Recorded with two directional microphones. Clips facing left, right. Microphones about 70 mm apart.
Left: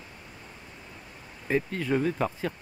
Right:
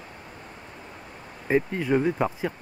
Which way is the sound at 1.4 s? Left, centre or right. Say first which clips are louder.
Right 4 dB; centre.